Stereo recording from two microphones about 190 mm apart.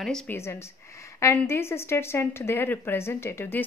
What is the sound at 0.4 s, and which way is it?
A woman's voice, 15° left (ahead or behind).